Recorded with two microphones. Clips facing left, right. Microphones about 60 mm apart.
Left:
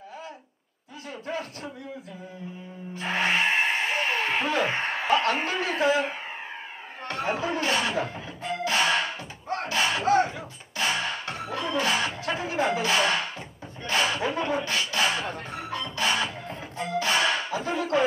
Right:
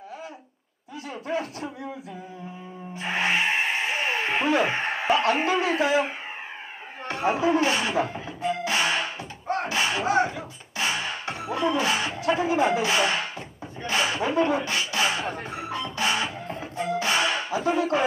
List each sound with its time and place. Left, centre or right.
1.2 s speech: right
3.0 s music: centre
3.9 s speech: centre
8.7 s a sound: centre
10.8 s speech: centre
16.7 s music: centre